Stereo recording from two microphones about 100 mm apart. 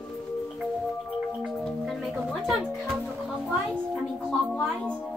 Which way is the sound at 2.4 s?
Centre (ahead or behind).